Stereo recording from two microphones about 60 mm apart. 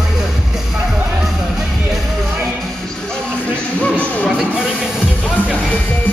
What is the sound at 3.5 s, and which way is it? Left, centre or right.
Music, left.